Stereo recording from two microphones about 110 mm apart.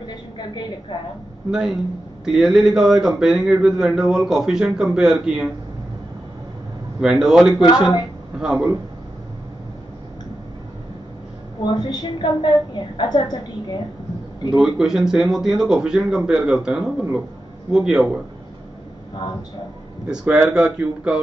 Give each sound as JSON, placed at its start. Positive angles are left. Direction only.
{"t": 1.5, "sound": "speech", "side_deg": -5}
{"t": 7.0, "sound": "speech", "side_deg": -5}
{"t": 11.6, "sound": "a woman's voice", "side_deg": 40}
{"t": 14.6, "sound": "speech", "side_deg": -5}
{"t": 20.1, "sound": "speech", "side_deg": -5}